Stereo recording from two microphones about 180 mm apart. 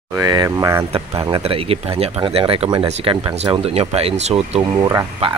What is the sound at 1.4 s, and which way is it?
Speech, 30° right (ahead or behind).